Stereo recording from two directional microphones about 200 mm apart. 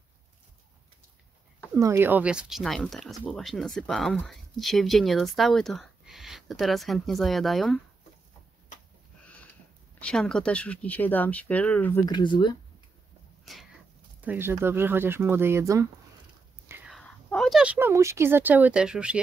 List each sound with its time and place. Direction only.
1.7 s speech: 15° right (ahead or behind)
9.9 s speech: 5° left (ahead or behind)
12.1 s speech: 25° left (ahead or behind)
13.5 s speech: centre (ahead or behind); by 15.9 s 15° right (ahead or behind)
16.6 s whispering: 10° right (ahead or behind)
16.9 s speech: 5° left (ahead or behind)